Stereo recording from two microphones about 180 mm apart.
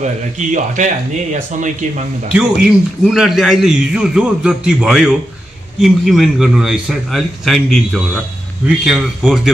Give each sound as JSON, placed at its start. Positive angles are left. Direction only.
{"t": 0.0, "sound": "a man's voice", "side_deg": -45}
{"t": 2.3, "sound": "a man's voice", "side_deg": -5}